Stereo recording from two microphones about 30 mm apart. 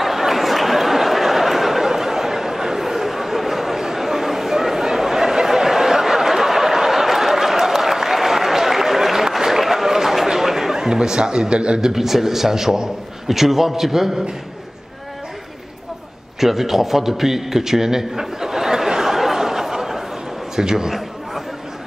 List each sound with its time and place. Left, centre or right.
0.0 s a sound: centre
3.8 s chatter: centre; by 11.8 s right
11.8 s a man's voice: centre
16.3 s a man's voice: centre
18.2 s a sound: centre
20.5 s a man's voice: centre